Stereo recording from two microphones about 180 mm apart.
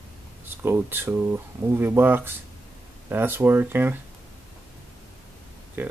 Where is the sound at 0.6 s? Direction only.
10° right (ahead or behind).